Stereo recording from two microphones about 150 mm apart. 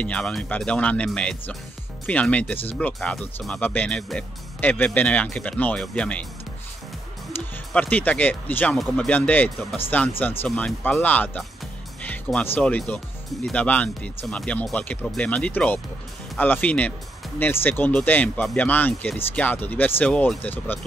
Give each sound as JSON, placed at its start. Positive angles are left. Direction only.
{"t": 0.0, "sound": "speech", "side_deg": 5}
{"t": 7.7, "sound": "speech", "side_deg": 10}